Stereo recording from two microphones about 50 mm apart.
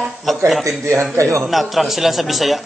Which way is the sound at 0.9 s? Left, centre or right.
Right.